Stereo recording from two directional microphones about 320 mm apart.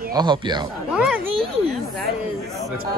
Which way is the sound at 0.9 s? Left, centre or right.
Centre.